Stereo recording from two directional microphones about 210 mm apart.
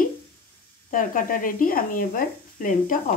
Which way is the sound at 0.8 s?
40° left (ahead or behind).